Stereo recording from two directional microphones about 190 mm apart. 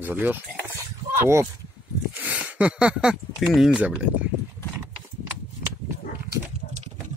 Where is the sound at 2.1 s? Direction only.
10° right (ahead or behind).